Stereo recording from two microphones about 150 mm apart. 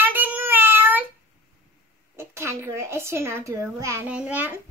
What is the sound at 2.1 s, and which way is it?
A child's voice, 15° right (ahead or behind).